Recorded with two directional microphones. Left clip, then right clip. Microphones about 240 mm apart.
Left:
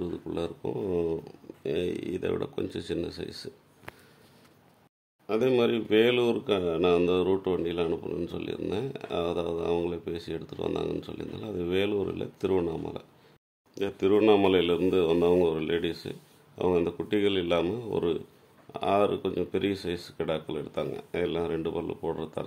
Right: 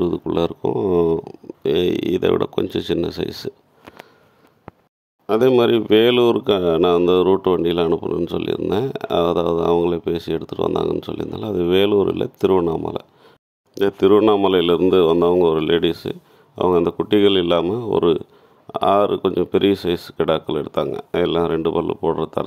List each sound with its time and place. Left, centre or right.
0.0 s speech: right
5.2 s speech: right